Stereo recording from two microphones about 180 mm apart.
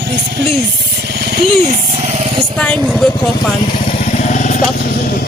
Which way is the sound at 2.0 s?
35° right (ahead or behind).